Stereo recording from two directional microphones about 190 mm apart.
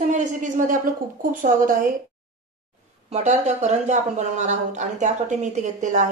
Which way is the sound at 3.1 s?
40° right (ahead or behind).